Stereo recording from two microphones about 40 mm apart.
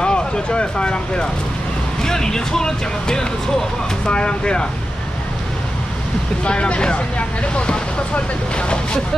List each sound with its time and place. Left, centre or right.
0.0 s speech: left
4.0 s speech: left
6.4 s speech: left